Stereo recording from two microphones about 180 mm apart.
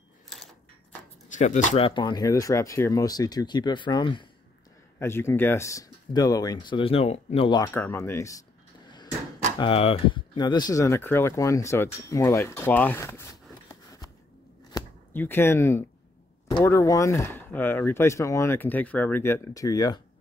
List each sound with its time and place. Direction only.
1.4 s speech: 45° left (ahead or behind)
1.9 s speech: 25° left (ahead or behind)
4.9 s speech: 15° left (ahead or behind)
9.6 s speech: 30° left (ahead or behind)
14.7 s chopping: 15° left (ahead or behind)
16.4 s speech: 20° left (ahead or behind)